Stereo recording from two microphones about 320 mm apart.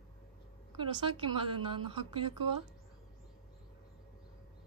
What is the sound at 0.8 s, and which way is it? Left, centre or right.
A woman's voice, centre.